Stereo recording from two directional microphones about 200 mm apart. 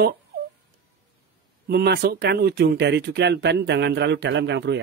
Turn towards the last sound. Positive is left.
turn(degrees=-60)  # may be behind; listen again after turning